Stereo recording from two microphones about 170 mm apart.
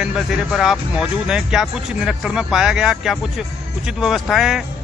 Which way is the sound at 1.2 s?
5° right (ahead or behind).